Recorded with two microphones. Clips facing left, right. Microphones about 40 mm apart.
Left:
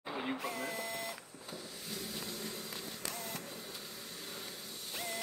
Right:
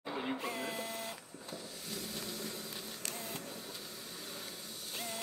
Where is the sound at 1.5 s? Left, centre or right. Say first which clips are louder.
Even; centre.